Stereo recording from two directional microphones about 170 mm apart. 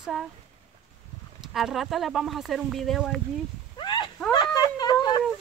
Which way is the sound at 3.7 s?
25° left (ahead or behind).